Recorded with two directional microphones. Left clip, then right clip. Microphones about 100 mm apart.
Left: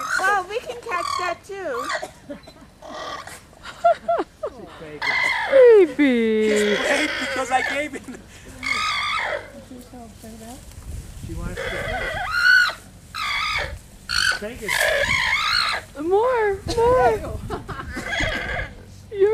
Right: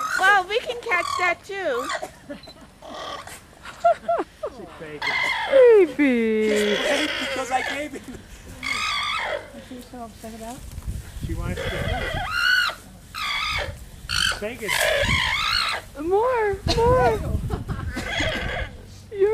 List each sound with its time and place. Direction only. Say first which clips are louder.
0.5 s oink: right 4 dB; 15° right (ahead or behind)
1.2 s speech: right 3 dB; 20° right (ahead or behind)
1.8 s speech: left 1 dB; centre (ahead or behind)
2.8 s dog: left 2 dB; 5° left (ahead or behind)
4.9 s chicken: left 2 dB; 5° left (ahead or behind)
11.5 s a sound: left 2 dB; centre (ahead or behind)
14.7 s speech: left 2 dB; centre (ahead or behind)
17.5 s a sound: left 3 dB; 15° left (ahead or behind)
18.0 s neigh: left 1 dB; centre (ahead or behind)
19.1 s whimper: left 2 dB; 10° left (ahead or behind)